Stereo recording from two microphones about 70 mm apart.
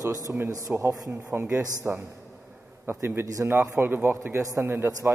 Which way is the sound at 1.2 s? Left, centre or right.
Right.